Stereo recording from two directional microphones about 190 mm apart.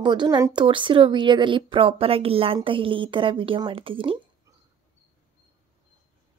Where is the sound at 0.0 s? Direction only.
25° right (ahead or behind).